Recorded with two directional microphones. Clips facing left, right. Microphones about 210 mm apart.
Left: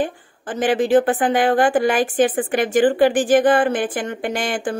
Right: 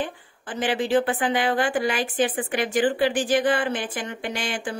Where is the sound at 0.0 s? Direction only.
45° left (ahead or behind).